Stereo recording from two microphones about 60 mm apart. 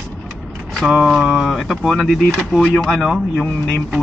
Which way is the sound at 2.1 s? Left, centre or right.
Centre.